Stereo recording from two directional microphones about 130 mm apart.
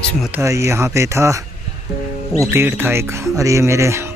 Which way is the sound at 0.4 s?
20° right (ahead or behind).